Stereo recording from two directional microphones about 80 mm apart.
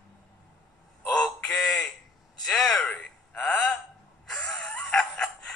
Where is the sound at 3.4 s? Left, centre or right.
Centre.